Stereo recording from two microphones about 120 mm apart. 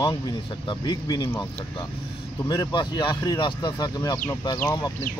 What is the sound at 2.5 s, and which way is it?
A man's voice, 40° left (ahead or behind).